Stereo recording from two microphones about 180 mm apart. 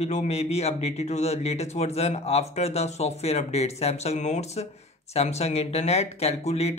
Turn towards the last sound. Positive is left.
turn(degrees=35)  # may be behind; listen again after turning